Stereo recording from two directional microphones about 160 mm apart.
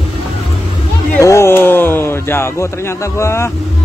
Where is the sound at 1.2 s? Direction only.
20° left (ahead or behind).